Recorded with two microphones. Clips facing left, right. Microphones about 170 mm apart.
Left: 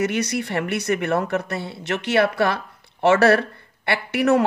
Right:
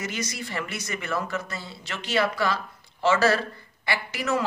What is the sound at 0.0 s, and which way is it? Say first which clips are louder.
Speech: left 10 dB; 65° left (ahead or behind).